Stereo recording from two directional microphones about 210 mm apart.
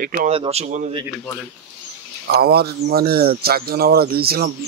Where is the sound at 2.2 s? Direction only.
50° right (ahead or behind).